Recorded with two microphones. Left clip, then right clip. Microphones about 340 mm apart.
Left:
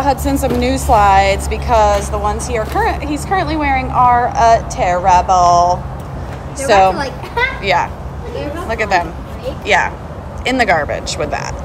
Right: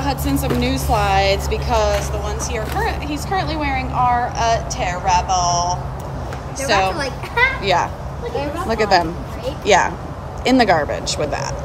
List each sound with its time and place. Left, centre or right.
0.0 s a woman's voice: centre